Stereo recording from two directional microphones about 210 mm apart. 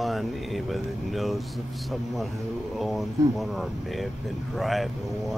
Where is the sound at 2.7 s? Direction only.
Centre (ahead or behind).